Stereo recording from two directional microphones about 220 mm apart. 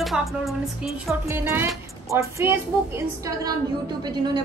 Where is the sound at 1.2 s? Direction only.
10° right (ahead or behind).